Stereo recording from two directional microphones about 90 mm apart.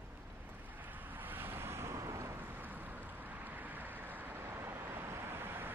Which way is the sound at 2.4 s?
20° right (ahead or behind).